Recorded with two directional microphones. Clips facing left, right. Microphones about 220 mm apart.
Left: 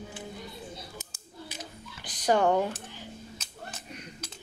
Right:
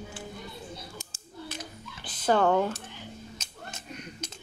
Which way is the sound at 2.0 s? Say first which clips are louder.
Even; 15° left (ahead or behind).